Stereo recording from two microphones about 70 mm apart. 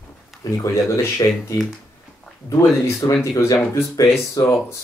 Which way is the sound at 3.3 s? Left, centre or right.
Left.